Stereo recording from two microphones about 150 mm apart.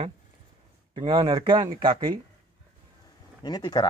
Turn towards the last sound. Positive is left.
turn(degrees=25)  # may be behind; listen again after turning